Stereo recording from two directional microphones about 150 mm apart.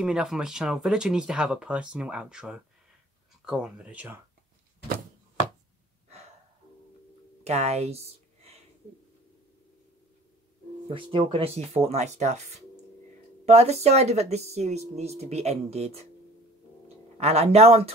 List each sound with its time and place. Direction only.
0.0 s speech: 5° right (ahead or behind)
6.0 s gasp: 50° right (ahead or behind)
7.4 s speech: 45° right (ahead or behind)
10.9 s speech: 35° right (ahead or behind)
17.2 s speech: 45° right (ahead or behind)